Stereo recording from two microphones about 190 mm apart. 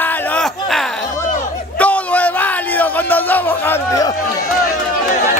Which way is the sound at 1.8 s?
5° left (ahead or behind).